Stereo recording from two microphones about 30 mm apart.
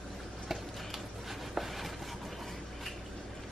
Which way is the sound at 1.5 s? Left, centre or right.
Centre.